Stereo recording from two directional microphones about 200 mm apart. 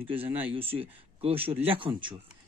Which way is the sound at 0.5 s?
30° right (ahead or behind).